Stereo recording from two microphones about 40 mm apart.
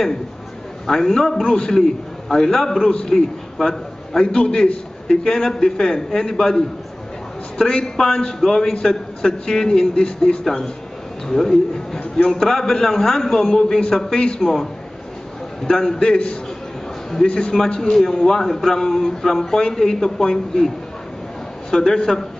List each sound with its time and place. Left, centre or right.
0.8 s a man's voice: centre
21.6 s a man's voice: centre